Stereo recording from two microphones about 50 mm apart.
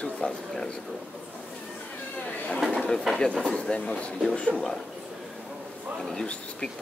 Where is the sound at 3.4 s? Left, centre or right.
Centre.